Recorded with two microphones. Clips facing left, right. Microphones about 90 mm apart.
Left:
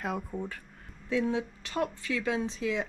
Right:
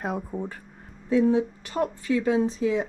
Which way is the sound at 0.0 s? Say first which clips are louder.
Right 4 dB; 30° right (ahead or behind).